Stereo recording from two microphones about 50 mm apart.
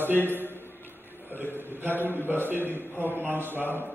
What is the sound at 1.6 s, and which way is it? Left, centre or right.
A man's voice, right.